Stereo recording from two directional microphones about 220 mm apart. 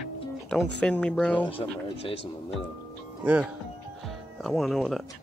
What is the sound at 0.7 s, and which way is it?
Speech, 5° left (ahead or behind).